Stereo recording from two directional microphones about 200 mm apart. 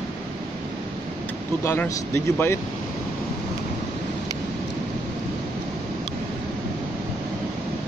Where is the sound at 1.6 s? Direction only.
10° left (ahead or behind).